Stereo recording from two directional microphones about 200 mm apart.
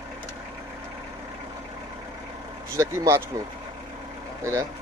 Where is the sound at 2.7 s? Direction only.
15° right (ahead or behind).